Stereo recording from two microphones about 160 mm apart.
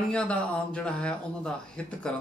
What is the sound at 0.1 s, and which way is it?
Speech, 5° left (ahead or behind).